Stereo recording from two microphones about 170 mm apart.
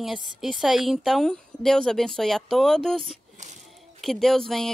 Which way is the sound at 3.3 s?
45° right (ahead or behind).